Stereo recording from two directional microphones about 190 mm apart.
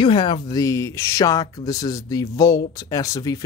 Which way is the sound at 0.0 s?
25° left (ahead or behind).